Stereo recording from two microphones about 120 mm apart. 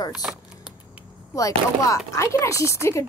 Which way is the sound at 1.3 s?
30° left (ahead or behind).